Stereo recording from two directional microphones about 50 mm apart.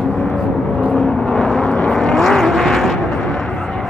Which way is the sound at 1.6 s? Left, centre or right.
Left.